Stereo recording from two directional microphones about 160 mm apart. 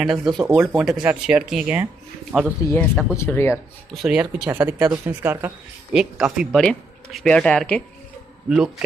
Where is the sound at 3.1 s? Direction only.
15° left (ahead or behind).